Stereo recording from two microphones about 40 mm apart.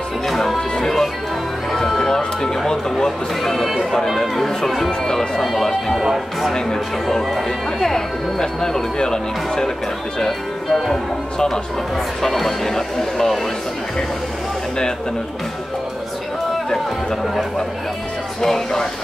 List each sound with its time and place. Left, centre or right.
0.3 s music: centre
0.6 s music: centre
2.0 s music: centre
3.9 s chatter: centre
4.6 s music: centre
5.9 s music: centre
6.5 s music: centre
10.1 s speech: centre
18.4 s speech: centre